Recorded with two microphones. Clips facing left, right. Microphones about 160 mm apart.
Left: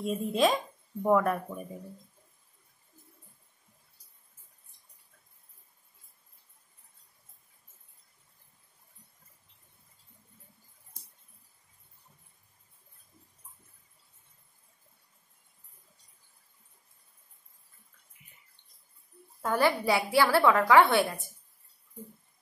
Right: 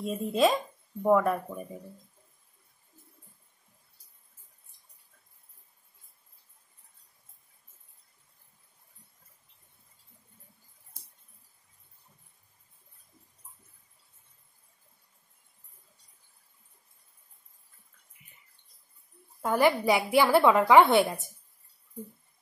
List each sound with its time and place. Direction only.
0.0 s speech: centre (ahead or behind)
19.4 s a woman's voice: 15° right (ahead or behind)